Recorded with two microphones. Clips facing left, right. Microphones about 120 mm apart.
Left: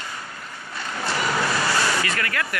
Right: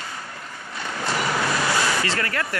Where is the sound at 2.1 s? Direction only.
30° right (ahead or behind).